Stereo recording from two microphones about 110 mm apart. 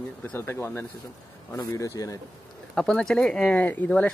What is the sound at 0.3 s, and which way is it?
Speech, 20° left (ahead or behind).